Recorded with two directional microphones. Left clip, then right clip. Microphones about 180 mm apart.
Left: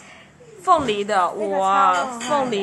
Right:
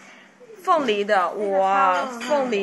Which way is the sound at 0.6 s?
15° left (ahead or behind).